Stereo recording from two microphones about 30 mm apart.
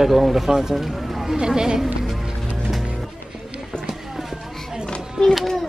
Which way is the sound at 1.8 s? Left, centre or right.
Centre.